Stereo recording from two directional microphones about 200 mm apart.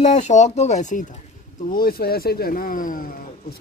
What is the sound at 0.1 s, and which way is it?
Speech, 35° left (ahead or behind).